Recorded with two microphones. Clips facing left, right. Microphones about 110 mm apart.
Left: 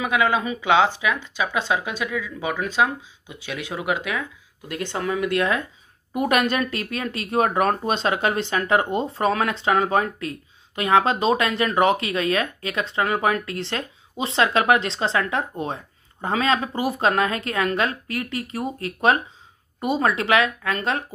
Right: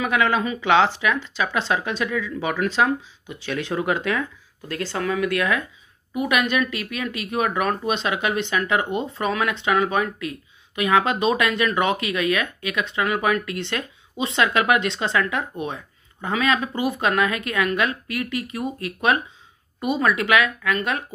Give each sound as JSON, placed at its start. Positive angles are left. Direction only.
{"t": 0.0, "sound": "speech", "side_deg": 15}
{"t": 6.1, "sound": "speech", "side_deg": 40}